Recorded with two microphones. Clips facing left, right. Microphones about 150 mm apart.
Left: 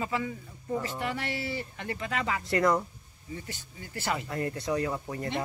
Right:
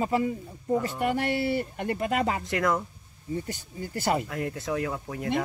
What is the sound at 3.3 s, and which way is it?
Speech, 45° right (ahead or behind).